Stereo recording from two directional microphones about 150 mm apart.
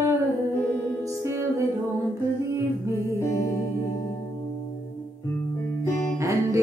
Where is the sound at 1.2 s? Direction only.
20° right (ahead or behind).